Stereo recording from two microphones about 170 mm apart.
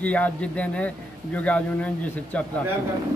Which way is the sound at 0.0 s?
10° left (ahead or behind).